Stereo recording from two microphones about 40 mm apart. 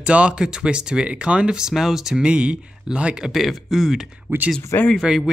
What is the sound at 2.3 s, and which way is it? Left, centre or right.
Speech, right.